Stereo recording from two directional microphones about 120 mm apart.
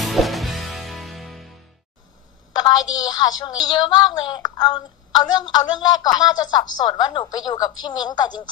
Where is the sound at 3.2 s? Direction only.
40° left (ahead or behind).